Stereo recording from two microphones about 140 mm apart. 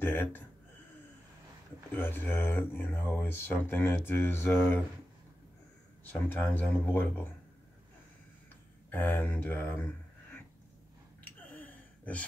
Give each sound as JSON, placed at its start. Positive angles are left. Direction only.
{"t": 0.0, "sound": "gasp", "side_deg": 15}
{"t": 2.0, "sound": "speech", "side_deg": 15}
{"t": 6.2, "sound": "speech", "side_deg": 15}
{"t": 8.9, "sound": "speech", "side_deg": 15}
{"t": 11.2, "sound": "gasp", "side_deg": 10}